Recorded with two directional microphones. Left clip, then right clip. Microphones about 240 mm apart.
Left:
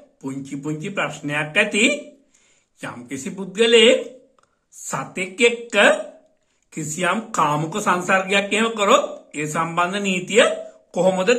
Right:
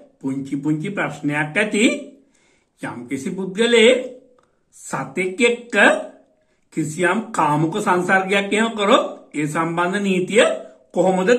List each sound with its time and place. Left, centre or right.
0.3 s speech: left